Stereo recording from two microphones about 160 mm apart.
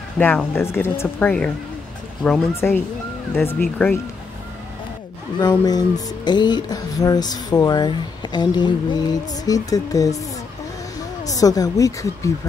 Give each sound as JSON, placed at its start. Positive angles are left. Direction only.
{"t": 0.2, "sound": "speech", "side_deg": 10}
{"t": 5.4, "sound": "speech", "side_deg": 25}
{"t": 11.2, "sound": "speech", "side_deg": 20}